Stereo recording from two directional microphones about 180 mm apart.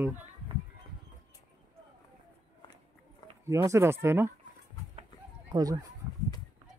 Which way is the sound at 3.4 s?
15° right (ahead or behind).